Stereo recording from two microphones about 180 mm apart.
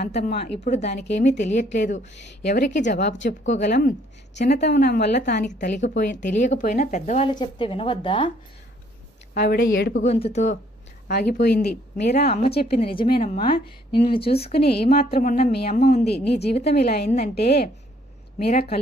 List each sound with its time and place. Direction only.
0.0 s a woman's voice: 35° left (ahead or behind)
2.9 s a woman's voice: 75° left (ahead or behind)
3.3 s speech: 45° left (ahead or behind)
4.4 s a woman's voice: 70° left (ahead or behind)
5.5 s speech: 45° left (ahead or behind)
7.2 s a woman's voice: 25° left (ahead or behind)
9.4 s speech: 60° left (ahead or behind)
10.0 s a woman's voice: 35° left (ahead or behind)
11.1 s speech: 65° left (ahead or behind)
12.9 s a woman's voice: 30° left (ahead or behind)
14.5 s speech: 60° left (ahead or behind)